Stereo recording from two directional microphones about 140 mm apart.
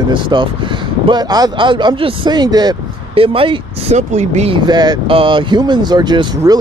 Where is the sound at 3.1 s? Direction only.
40° right (ahead or behind).